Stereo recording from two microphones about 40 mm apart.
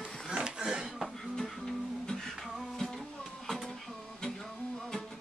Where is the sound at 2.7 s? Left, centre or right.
Centre.